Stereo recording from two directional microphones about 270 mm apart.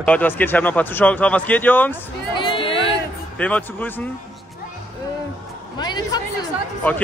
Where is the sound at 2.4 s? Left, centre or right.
Centre.